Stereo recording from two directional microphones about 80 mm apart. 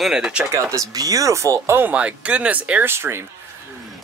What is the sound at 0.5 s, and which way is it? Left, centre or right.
Speech, right.